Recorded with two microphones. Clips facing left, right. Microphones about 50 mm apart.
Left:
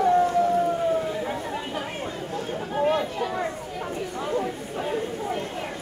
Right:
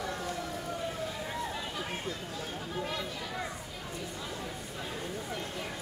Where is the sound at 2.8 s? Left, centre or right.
Left.